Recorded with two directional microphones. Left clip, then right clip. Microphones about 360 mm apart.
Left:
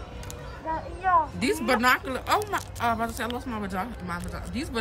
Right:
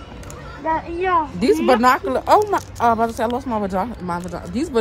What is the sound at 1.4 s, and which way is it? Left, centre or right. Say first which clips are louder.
Speech: right 9 dB; centre.